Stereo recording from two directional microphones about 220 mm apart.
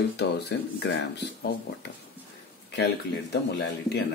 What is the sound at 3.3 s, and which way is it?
Speech, 50° left (ahead or behind).